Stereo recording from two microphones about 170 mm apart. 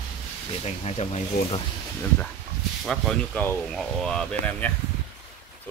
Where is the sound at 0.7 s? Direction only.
40° left (ahead or behind).